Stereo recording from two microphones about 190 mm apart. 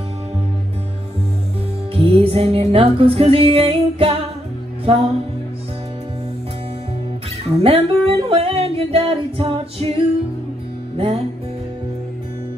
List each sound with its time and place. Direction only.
2.0 s music: 30° right (ahead or behind)
7.4 s music: 30° right (ahead or behind)